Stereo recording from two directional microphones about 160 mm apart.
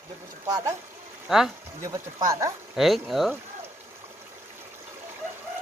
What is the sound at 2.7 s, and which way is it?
Speech, centre (ahead or behind).